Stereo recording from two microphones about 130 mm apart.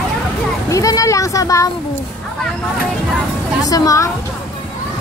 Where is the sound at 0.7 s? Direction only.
25° left (ahead or behind).